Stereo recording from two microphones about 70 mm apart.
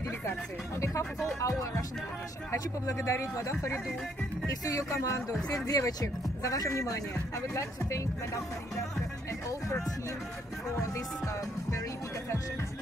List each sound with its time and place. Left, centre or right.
0.7 s speech: left
5.7 s speech: left
6.4 s speech: left